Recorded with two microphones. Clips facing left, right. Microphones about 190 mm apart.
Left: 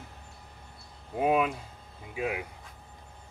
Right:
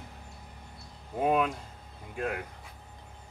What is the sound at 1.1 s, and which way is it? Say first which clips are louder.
Speech: left 1 dB; 5° left (ahead or behind).